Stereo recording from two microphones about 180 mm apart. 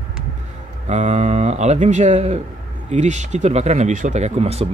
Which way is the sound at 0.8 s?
40° right (ahead or behind).